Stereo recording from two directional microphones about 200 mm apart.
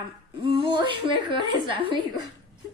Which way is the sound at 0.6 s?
25° right (ahead or behind).